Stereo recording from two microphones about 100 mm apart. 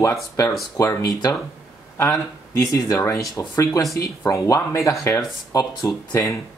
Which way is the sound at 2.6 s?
35° left (ahead or behind).